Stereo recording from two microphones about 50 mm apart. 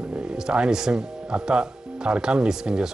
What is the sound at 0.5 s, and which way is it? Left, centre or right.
Speech, centre.